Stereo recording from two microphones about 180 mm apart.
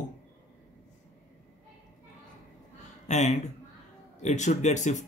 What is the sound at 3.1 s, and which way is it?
Speech, 40° left (ahead or behind).